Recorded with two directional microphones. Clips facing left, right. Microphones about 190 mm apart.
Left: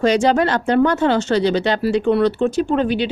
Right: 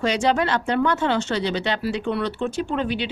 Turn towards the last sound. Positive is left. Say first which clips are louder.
# left 7 dB
turn(degrees=40)  # may be behind; listen again after turning